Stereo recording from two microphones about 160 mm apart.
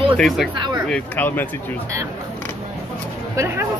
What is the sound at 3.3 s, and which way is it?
Speech, 15° right (ahead or behind).